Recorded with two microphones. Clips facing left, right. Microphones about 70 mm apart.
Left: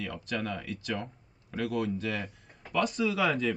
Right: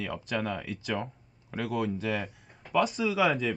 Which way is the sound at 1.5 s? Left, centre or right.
Centre.